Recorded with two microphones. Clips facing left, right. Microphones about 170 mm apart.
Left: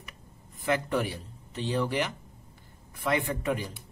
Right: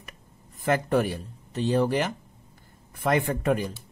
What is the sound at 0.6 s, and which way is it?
A man's voice, 45° right (ahead or behind).